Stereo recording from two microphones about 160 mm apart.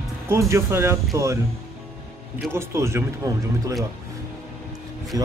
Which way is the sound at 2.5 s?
15° right (ahead or behind).